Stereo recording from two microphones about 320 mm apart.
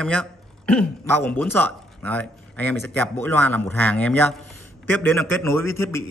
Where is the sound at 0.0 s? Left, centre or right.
Centre.